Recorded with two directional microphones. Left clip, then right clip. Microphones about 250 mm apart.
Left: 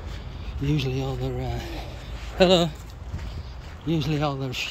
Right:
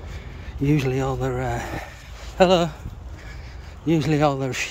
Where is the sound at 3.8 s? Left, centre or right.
Centre.